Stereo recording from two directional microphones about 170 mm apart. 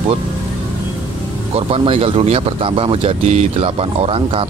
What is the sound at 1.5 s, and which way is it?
Speech, 35° right (ahead or behind).